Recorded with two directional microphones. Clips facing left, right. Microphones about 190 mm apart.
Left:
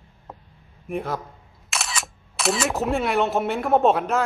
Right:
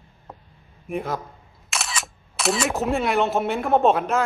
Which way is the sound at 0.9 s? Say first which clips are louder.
Even; centre (ahead or behind).